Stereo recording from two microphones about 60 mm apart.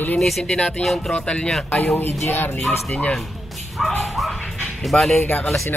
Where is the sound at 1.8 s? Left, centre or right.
Left.